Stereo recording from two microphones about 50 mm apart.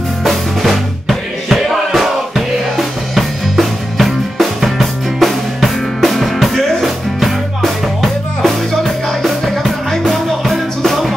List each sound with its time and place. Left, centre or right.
0.2 s music: centre